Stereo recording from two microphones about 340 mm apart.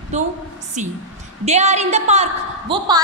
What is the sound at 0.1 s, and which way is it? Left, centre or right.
Speech, centre.